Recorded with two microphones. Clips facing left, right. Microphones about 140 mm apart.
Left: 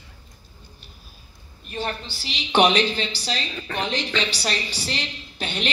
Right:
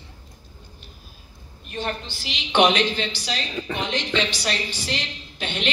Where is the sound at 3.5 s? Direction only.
5° right (ahead or behind).